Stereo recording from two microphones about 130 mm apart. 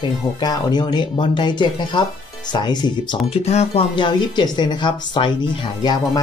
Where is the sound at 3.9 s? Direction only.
35° left (ahead or behind).